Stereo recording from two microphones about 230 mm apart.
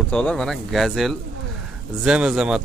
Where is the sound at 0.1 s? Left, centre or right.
Centre.